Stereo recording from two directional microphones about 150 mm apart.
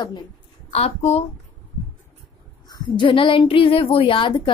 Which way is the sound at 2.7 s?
30° left (ahead or behind).